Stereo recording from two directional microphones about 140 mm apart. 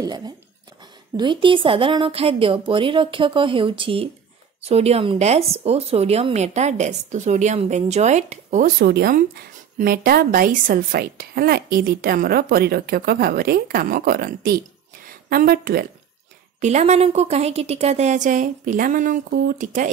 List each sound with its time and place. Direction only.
0.0 s a woman's voice: 30° right (ahead or behind); by 15.9 s 90° right
16.6 s a woman's voice: 55° right (ahead or behind)